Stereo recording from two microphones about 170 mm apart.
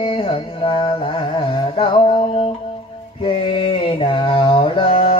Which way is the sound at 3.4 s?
35° left (ahead or behind).